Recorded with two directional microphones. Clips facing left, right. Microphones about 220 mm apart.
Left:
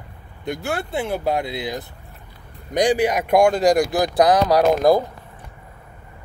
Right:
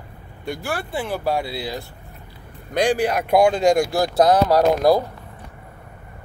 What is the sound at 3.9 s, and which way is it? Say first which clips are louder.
Speech: even; 15° left (ahead or behind).